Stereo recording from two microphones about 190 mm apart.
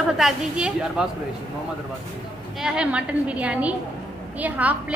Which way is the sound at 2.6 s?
5° right (ahead or behind).